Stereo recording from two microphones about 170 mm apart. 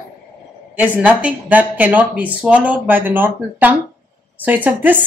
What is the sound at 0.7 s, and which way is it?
Speech, 10° right (ahead or behind).